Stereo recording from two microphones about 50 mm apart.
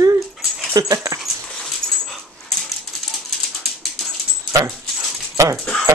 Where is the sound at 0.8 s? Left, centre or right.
Right.